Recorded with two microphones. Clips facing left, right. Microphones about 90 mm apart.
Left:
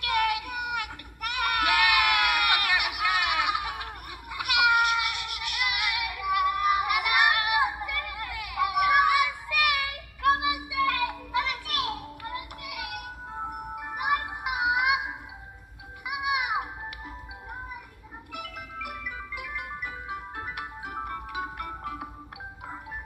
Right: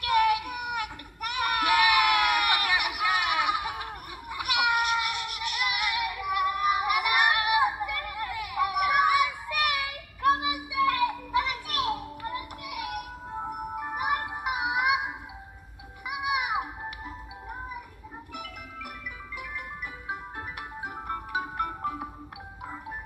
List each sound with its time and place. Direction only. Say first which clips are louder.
0.0 s children playing: right 3 dB; 30° right (ahead or behind)
10.5 s music: right 1 dB; 30° right (ahead or behind)
16.1 s music: even; 30° right (ahead or behind)
18.3 s music: left 3 dB; 60° left (ahead or behind)
20.3 s music: left 1 dB; 30° right (ahead or behind)